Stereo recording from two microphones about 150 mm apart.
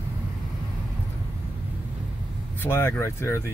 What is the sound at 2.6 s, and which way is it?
Speech, 15° left (ahead or behind).